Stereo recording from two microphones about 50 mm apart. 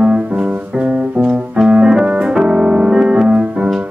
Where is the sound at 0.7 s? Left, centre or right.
Centre.